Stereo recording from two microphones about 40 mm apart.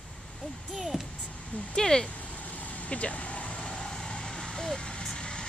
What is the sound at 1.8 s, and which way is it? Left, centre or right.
Speech, centre.